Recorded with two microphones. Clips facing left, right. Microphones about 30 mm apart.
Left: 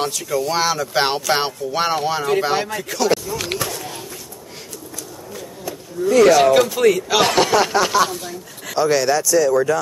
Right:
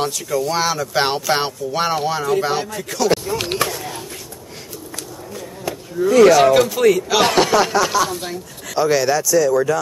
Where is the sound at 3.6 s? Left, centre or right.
Centre.